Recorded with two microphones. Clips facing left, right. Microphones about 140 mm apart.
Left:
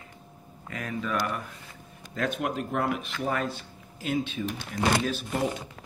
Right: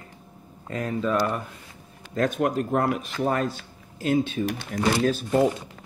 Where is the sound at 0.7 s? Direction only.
35° right (ahead or behind).